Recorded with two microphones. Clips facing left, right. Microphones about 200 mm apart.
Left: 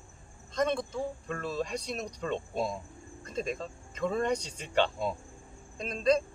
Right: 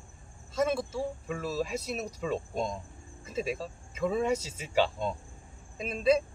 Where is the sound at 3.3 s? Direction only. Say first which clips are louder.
Right 1 dB; 5° right (ahead or behind).